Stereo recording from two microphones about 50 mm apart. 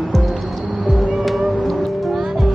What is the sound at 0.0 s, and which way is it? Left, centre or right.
Music, centre.